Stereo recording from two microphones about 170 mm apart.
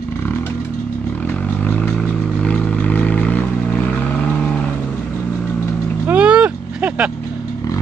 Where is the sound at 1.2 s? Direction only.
10° left (ahead or behind).